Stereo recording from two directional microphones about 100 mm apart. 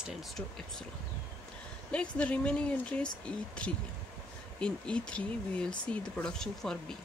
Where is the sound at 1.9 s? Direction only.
10° left (ahead or behind).